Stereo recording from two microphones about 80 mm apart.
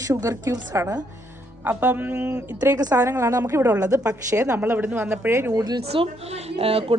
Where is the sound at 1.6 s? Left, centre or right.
Right.